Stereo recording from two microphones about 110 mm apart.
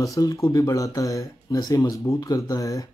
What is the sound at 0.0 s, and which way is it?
Speech, 30° left (ahead or behind).